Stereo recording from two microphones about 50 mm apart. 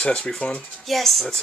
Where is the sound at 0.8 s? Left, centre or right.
Centre.